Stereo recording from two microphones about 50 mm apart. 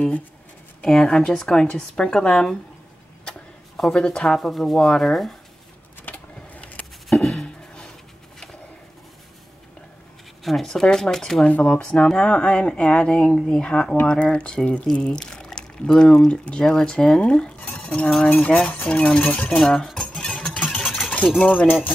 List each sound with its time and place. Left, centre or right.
1.3 s speech: centre
3.7 s speech: centre
4.4 s speech: centre
6.0 s a sound: left
7.1 s a sound: centre
10.4 s speech: centre
11.4 s speech: left
15.1 s speech: centre
19.6 s cutlery: centre
20.5 s vehicle: left
20.8 s a sound: centre
21.4 s speech: left